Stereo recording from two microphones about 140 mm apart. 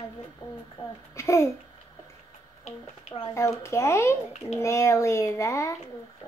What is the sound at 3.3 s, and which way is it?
A child's voice, 20° left (ahead or behind).